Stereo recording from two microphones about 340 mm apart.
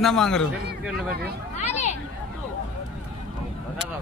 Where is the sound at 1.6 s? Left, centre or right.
Centre.